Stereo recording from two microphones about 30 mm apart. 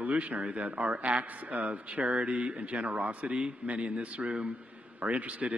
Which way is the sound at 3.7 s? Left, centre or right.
Right.